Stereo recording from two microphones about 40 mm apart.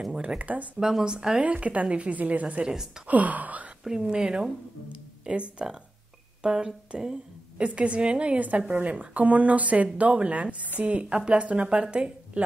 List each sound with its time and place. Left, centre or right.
0.4 s a woman's voice: right
0.7 s speech: centre
1.4 s a woman's voice: right
2.6 s speech: centre
3.1 s speech: right
4.1 s a woman's voice: right
7.5 s a woman's voice: right
12.4 s a woman's voice: right